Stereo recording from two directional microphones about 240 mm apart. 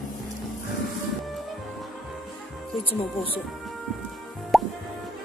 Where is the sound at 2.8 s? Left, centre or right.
Left.